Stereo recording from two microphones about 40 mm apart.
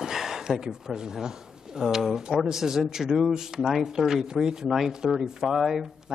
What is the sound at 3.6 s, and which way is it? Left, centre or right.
Speech, centre.